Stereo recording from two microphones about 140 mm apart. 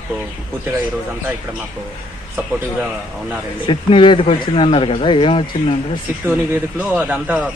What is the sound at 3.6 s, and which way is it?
Speech, 35° left (ahead or behind).